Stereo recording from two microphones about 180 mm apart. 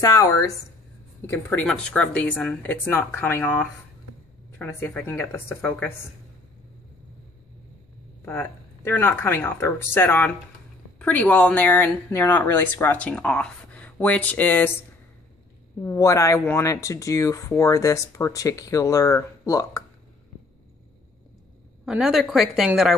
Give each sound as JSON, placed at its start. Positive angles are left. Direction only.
{"t": 0.0, "sound": "speech", "side_deg": 20}
{"t": 8.3, "sound": "speech", "side_deg": 10}
{"t": 15.8, "sound": "speech", "side_deg": 15}
{"t": 21.8, "sound": "speech", "side_deg": -5}